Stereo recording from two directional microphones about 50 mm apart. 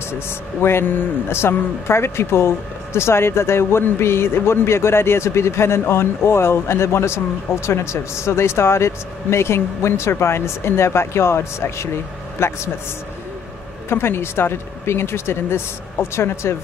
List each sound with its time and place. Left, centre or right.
0.3 s speech: left
13.8 s speech: left